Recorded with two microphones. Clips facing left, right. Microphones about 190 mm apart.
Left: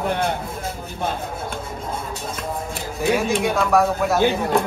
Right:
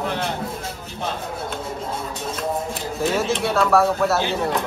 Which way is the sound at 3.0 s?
15° left (ahead or behind).